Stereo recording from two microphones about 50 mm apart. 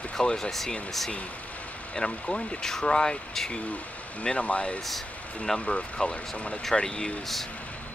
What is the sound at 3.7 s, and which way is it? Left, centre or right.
Speech, left.